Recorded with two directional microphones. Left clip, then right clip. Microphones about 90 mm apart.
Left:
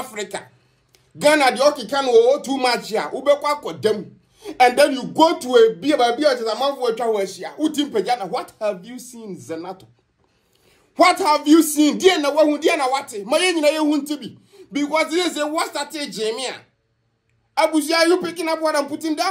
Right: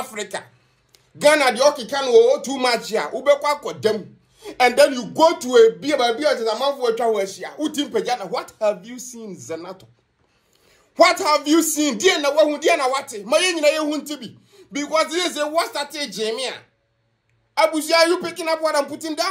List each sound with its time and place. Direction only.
0.1 s speech: 10° left (ahead or behind); by 2.5 s 35° left (ahead or behind)
2.5 s speech: 15° left (ahead or behind)
11.0 s speech: 20° left (ahead or behind)
12.6 s speech: 10° left (ahead or behind)